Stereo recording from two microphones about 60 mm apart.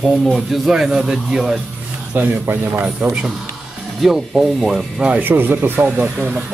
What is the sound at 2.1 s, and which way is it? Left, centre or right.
Speech, right.